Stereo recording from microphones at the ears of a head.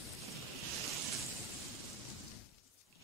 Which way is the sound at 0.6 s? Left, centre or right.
Right.